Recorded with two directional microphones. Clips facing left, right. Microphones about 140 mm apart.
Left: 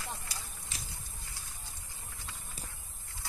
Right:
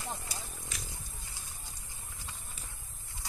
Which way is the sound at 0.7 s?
30° left (ahead or behind).